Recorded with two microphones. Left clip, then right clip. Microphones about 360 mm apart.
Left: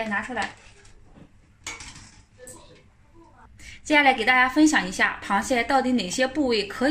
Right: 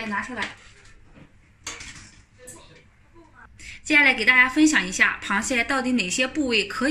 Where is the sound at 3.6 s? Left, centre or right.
Centre.